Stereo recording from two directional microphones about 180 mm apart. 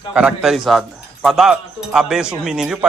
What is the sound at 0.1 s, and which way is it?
A man's voice, 5° right (ahead or behind).